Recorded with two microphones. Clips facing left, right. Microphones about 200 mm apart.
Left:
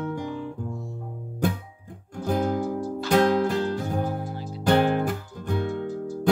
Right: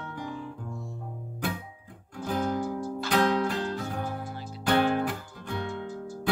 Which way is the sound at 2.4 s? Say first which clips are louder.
Left 4 dB; 45° left (ahead or behind).